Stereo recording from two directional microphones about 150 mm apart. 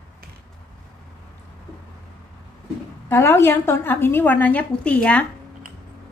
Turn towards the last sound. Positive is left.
turn(degrees=10)  # may be behind; listen again after turning